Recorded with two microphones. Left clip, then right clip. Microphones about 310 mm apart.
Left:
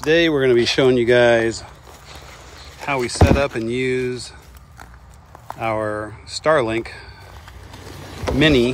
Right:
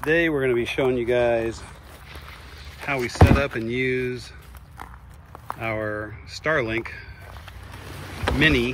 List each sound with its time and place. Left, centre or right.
0.0 s speech: left
2.8 s speech: centre
5.5 s speech: centre
8.3 s speech: centre